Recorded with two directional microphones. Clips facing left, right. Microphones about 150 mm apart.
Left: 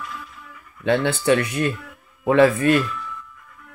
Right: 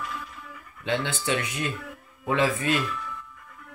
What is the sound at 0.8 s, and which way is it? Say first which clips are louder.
Speech: left 9 dB; 55° left (ahead or behind).